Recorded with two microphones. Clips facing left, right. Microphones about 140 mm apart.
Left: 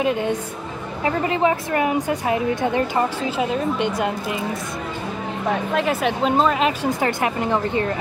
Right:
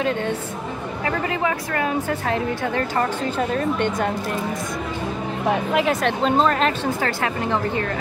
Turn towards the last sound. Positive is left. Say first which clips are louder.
# left 2 dB
turn(degrees=20)  # may be behind; listen again after turning